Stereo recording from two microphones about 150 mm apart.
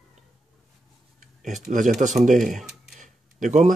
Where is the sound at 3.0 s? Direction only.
55° right (ahead or behind).